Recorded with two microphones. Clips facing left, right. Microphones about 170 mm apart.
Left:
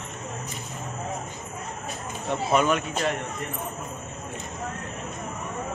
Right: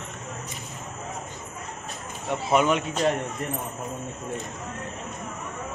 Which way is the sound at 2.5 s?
20° right (ahead or behind).